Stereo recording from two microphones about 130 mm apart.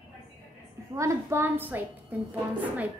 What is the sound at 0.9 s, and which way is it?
A woman's voice, 20° right (ahead or behind).